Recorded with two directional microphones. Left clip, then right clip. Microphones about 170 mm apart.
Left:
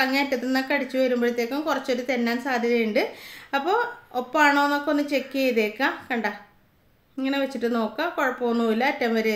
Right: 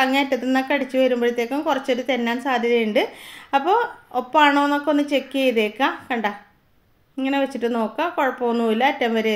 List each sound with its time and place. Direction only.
0.0 s a woman's voice: 20° right (ahead or behind)